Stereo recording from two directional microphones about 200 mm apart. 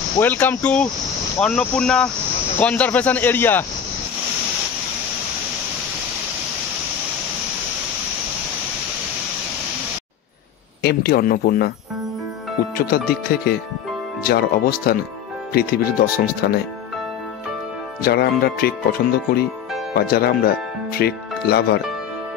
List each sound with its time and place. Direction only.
0.2 s speech: 10° left (ahead or behind)
10.8 s speech: 55° left (ahead or behind)
12.7 s speech: 50° left (ahead or behind)
18.0 s speech: 50° left (ahead or behind)